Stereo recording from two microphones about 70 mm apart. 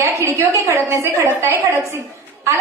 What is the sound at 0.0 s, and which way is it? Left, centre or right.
A woman's voice, right.